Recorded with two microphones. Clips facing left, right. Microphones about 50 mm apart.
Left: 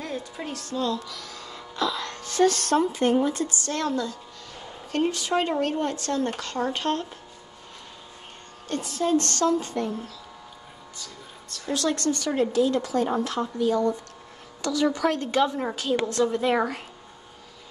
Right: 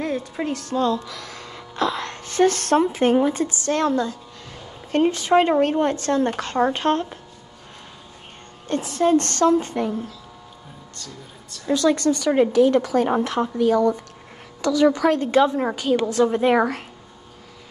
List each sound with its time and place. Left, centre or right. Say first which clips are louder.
0.0 s speech: right 8 dB; right
3.3 s speech: right 6 dB; right
8.6 s a woman's voice: right 5 dB; right
8.9 s a woman's voice: right 5 dB; right
9.2 s speech: right 5 dB; right
11.6 s speech: right 7 dB; right
14.6 s a woman's voice: right 6 dB; right; by 16.3 s centre
16.3 s a woman's voice: right 5 dB; right
16.5 s speech: right 5 dB; centre